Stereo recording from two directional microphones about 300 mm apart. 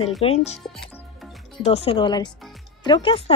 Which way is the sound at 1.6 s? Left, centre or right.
Centre.